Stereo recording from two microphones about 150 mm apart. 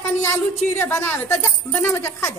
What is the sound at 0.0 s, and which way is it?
A woman's voice, 15° left (ahead or behind).